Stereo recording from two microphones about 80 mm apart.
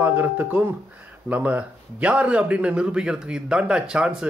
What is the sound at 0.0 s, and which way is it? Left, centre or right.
A man's voice, right.